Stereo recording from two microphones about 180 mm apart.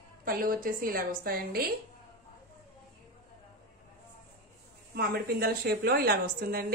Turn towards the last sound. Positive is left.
turn(degrees=-55)  # may be behind; listen again after turning